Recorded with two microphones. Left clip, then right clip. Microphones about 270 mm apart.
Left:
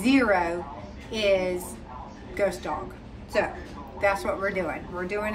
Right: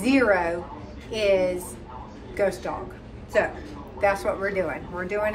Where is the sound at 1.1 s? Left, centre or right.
Left.